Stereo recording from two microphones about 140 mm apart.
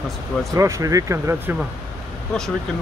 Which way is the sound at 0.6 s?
20° right (ahead or behind).